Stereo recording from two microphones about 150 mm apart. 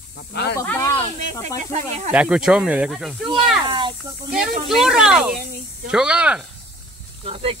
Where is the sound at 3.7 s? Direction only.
35° right (ahead or behind).